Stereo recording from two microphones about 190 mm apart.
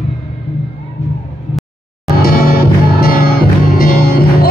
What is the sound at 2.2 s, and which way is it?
Music, 50° left (ahead or behind).